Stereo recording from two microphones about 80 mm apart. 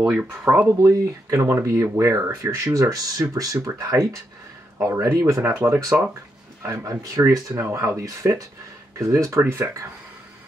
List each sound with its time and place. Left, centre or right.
0.0 s speech: centre
0.8 s speech: right
7.0 s speech: right
7.5 s speech: right